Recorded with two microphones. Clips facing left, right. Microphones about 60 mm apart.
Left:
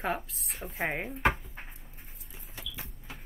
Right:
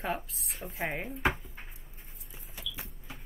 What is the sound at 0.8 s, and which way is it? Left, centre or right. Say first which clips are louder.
Speech: left 2 dB; centre.